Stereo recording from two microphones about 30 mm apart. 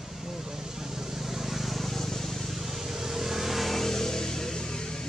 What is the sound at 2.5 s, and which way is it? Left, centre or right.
Vehicle, centre.